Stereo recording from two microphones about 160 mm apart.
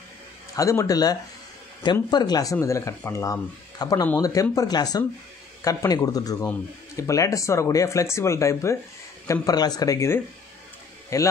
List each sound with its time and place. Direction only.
0.6 s speech: 20° left (ahead or behind)